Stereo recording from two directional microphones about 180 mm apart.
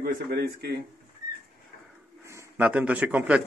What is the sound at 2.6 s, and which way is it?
Speech, 5° right (ahead or behind).